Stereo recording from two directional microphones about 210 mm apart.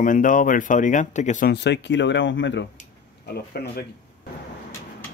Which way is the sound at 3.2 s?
50° left (ahead or behind).